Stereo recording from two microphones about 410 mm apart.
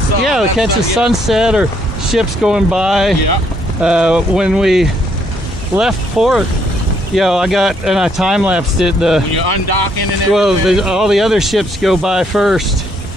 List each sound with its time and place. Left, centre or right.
0.2 s speech: centre
9.3 s speech: left
10.3 s speech: centre